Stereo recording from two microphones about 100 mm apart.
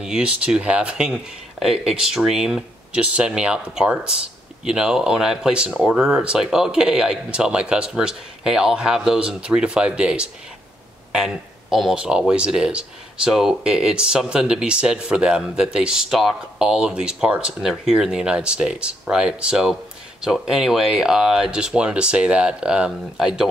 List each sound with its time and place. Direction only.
0.0 s speech: 10° right (ahead or behind)